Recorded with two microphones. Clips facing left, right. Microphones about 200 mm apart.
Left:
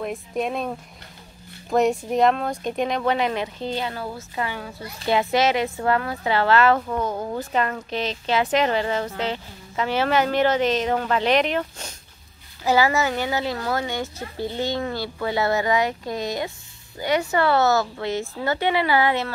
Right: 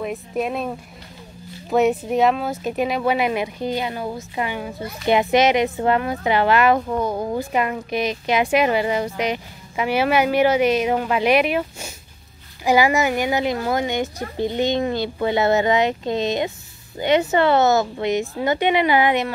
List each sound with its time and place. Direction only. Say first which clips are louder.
0.0 s a woman's voice: right 2 dB; 5° right (ahead or behind)